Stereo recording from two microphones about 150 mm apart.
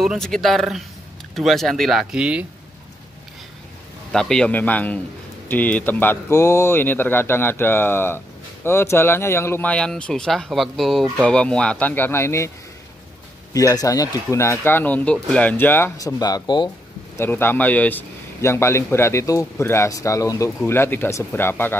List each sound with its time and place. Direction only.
0.0 s speech: centre (ahead or behind)
4.1 s a man's voice: 5° left (ahead or behind)
13.5 s a man's voice: 20° left (ahead or behind)
16.2 s speech: 25° left (ahead or behind)
17.2 s a man's voice: 15° left (ahead or behind)